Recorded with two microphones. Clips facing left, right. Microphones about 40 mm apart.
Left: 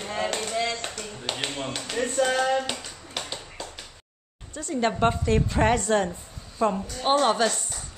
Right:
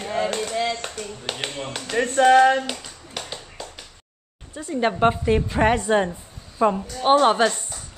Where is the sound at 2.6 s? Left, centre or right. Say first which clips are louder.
Right 1 dB; centre.